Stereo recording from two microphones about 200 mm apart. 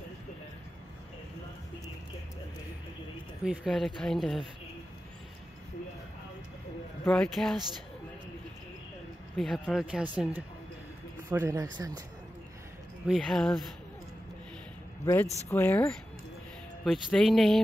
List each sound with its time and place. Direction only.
3.4 s speech: centre (ahead or behind)
7.1 s speech: 5° left (ahead or behind)
9.4 s speech: centre (ahead or behind); by 11.7 s 15° right (ahead or behind)
13.0 s speech: centre (ahead or behind)
15.1 s speech: 10° left (ahead or behind)